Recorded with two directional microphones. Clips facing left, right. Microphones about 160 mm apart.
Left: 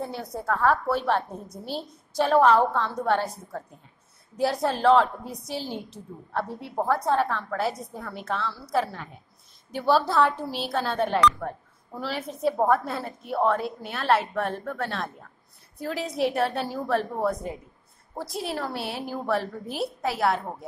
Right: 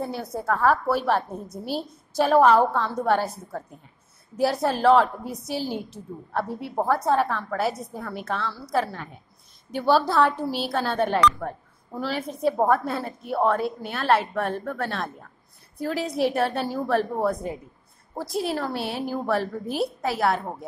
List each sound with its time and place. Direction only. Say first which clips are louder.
0.0 s a woman's voice: right 3 dB; 5° right (ahead or behind)